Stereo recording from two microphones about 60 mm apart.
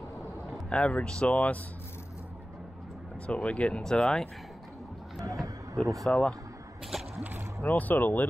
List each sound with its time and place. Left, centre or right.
0.7 s speech: centre
3.3 s speech: centre
3.8 s speech: centre
5.2 s a sound: right
6.1 s speech: centre
6.9 s a sound: centre
7.6 s speech: left